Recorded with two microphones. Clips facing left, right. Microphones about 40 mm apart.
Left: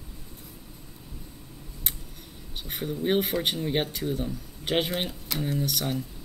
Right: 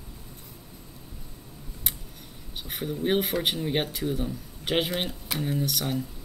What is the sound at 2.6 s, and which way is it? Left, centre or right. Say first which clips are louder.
A man's voice: even; centre.